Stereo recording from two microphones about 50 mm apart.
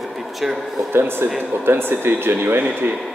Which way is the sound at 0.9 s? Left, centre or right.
Right.